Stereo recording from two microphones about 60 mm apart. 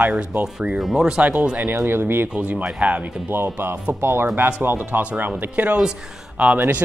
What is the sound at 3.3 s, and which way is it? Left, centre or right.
Speech, right.